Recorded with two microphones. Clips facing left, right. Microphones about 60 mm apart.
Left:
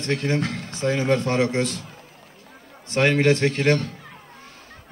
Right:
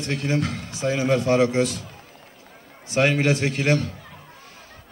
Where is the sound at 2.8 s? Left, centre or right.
Centre.